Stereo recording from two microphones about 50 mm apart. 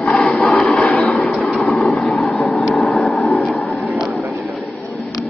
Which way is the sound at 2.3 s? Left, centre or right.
Centre.